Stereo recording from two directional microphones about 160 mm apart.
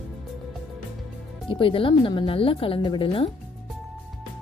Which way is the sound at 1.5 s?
35° left (ahead or behind).